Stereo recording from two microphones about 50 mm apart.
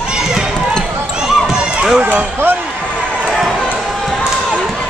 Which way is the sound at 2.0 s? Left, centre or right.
Right.